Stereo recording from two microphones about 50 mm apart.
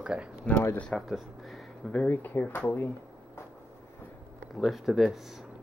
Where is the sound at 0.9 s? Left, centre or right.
Centre.